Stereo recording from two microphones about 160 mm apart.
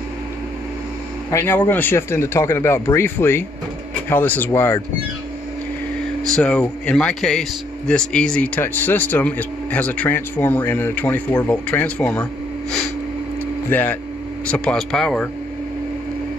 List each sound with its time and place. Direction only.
1.3 s speech: 15° left (ahead or behind)
6.2 s speech: 5° left (ahead or behind)
13.7 s speech: 10° left (ahead or behind)